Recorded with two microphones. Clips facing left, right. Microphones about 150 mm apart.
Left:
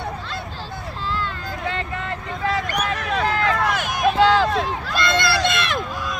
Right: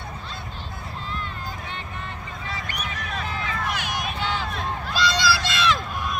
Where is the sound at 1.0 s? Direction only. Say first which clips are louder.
Left 7 dB; 90° left.